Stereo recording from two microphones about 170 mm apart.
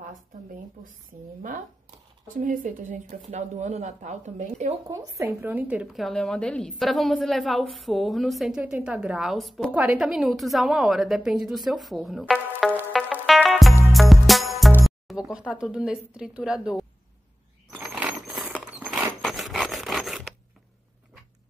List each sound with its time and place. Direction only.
2.2 s speech: 55° right (ahead or behind)
4.8 s a woman's voice: 15° right (ahead or behind); by 12.7 s centre (ahead or behind)
12.9 s music: centre (ahead or behind)
15.0 s a woman's voice: 5° right (ahead or behind)
17.6 s a sound: 5° right (ahead or behind)
19.2 s zipper: centre (ahead or behind)